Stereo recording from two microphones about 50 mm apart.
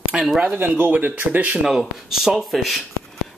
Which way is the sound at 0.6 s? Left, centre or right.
Right.